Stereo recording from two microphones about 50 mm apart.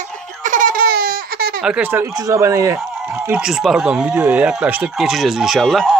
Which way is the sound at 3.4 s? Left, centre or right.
Centre.